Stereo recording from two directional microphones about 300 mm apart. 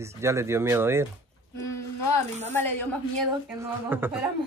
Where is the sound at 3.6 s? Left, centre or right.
Centre.